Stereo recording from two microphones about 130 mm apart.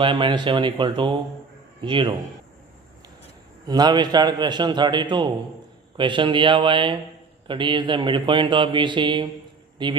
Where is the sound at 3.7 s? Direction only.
35° right (ahead or behind).